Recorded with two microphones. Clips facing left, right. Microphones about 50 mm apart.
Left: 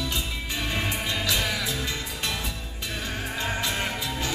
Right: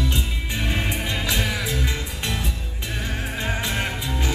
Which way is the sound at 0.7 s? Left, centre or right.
Right.